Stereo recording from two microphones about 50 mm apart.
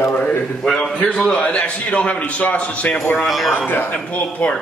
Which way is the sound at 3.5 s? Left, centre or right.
Left.